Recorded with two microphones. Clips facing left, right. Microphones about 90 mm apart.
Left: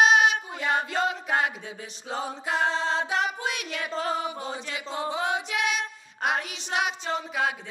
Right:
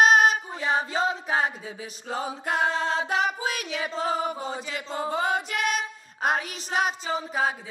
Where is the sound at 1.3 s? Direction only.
Centre (ahead or behind).